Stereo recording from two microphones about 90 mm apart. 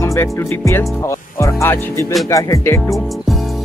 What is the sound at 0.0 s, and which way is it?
Speech, 35° left (ahead or behind).